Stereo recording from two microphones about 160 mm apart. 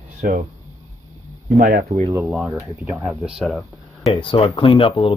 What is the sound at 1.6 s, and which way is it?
Speech, 65° right (ahead or behind).